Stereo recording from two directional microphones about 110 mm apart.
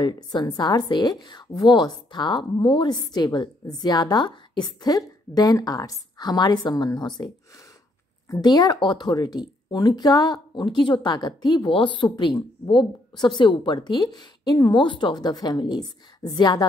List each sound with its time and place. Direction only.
0.0 s a woman's voice: 40° left (ahead or behind)
8.3 s a woman's voice: 35° left (ahead or behind)